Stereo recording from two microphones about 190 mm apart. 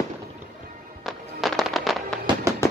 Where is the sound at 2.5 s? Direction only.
15° right (ahead or behind).